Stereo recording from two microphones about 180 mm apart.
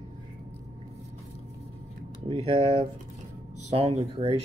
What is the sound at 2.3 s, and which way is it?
Speech, 35° right (ahead or behind).